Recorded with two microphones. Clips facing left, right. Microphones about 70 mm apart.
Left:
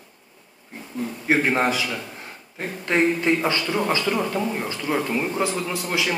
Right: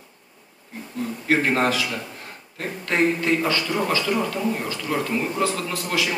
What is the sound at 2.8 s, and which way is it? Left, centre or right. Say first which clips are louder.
A man's voice: left 1 dB; centre.